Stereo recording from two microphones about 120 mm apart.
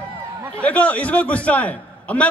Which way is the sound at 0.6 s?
10° left (ahead or behind).